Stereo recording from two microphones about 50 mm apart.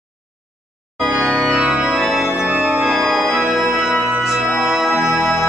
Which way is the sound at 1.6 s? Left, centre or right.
Centre.